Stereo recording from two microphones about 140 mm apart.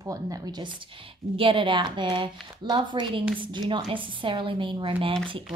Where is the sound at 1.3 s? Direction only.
40° right (ahead or behind).